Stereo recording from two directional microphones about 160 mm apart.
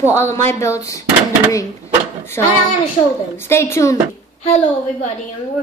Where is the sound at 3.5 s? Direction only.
15° left (ahead or behind).